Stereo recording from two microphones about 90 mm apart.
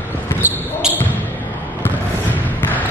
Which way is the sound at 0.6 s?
20° left (ahead or behind).